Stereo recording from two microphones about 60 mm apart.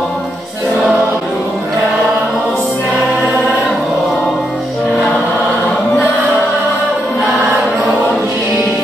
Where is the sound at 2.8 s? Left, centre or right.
Centre.